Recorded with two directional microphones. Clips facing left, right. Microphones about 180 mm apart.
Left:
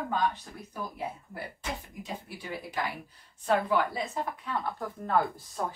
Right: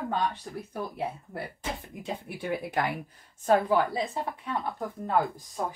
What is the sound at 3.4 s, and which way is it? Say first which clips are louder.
Speech: right 3 dB; 40° right (ahead or behind).